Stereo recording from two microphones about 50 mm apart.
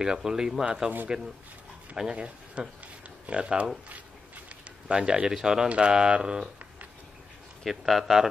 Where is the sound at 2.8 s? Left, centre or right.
Right.